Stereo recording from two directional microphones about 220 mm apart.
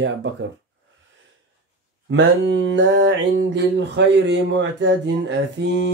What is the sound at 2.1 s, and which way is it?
Mantra, 55° right (ahead or behind).